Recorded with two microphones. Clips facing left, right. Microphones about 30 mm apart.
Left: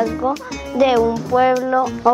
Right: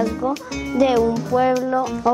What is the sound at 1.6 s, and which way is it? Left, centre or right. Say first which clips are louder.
Speech: left 3 dB; centre.